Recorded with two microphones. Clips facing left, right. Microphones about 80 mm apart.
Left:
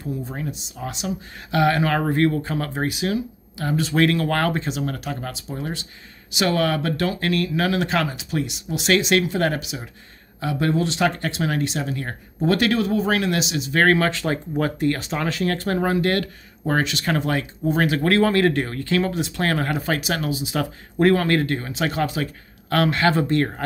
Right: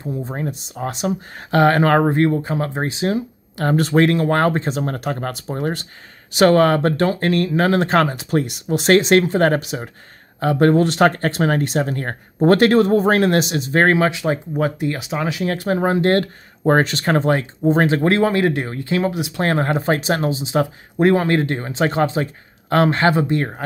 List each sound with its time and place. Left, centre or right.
0.0 s speech: right
2.0 s speech: right
3.5 s speech: right
3.9 s speech: right
13.8 s speech: centre
23.1 s speech: centre